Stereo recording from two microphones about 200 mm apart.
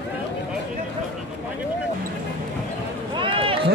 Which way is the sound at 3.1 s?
25° right (ahead or behind).